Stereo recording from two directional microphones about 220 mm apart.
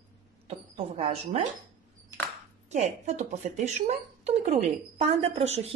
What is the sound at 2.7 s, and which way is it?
Speech, 30° right (ahead or behind).